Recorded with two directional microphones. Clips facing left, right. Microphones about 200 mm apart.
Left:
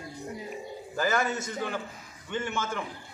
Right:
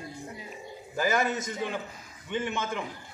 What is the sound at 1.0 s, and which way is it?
A man's voice, 15° right (ahead or behind).